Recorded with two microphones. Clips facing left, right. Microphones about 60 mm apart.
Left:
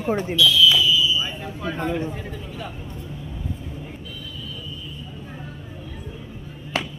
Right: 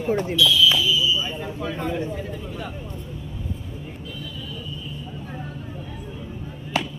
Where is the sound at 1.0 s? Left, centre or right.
Left.